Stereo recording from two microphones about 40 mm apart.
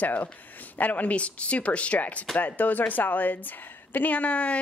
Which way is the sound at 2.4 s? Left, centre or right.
Left.